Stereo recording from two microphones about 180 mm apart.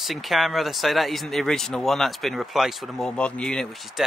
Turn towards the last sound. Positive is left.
turn(degrees=5)  # may be behind; listen again after turning